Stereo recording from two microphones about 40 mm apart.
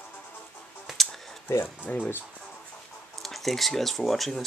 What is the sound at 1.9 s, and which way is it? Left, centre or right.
Speech, left.